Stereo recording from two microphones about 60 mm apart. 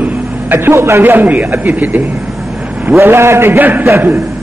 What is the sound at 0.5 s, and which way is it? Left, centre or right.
Speech, right.